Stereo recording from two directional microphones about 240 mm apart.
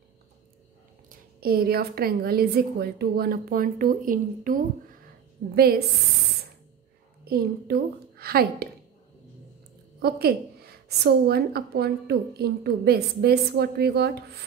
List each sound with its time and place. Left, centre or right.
1.0 s a woman's voice: right
7.2 s a woman's voice: right
10.0 s a woman's voice: right